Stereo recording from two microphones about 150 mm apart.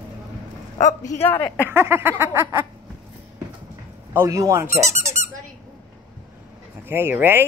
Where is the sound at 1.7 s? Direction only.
15° right (ahead or behind).